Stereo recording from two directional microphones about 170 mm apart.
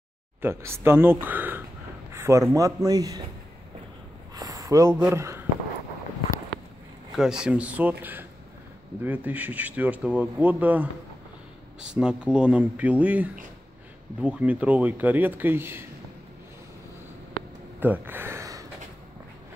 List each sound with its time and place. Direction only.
0.4 s speech: 15° right (ahead or behind)
2.1 s a sound: 15° right (ahead or behind)
2.5 s speech: 20° right (ahead or behind)
4.4 s speech: 20° right (ahead or behind)
7.2 s speech: 5° right (ahead or behind)
17.7 s a sound: 10° right (ahead or behind)